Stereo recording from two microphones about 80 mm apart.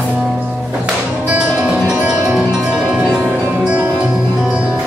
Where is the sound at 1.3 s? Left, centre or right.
Centre.